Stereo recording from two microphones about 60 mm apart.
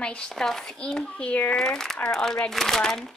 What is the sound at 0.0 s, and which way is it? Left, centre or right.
Speech, centre.